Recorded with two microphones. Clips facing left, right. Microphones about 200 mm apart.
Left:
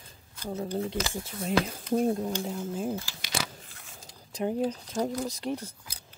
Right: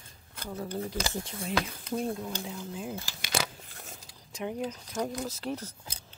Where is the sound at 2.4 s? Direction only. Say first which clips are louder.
Left 6 dB; 45° left (ahead or behind).